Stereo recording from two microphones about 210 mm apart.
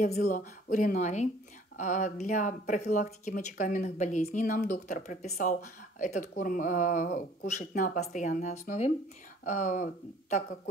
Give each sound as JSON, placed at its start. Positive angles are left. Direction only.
{"t": 0.0, "sound": "speech", "side_deg": 40}